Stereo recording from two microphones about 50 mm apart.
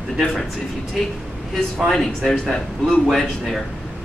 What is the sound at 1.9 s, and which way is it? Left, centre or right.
Speech, centre.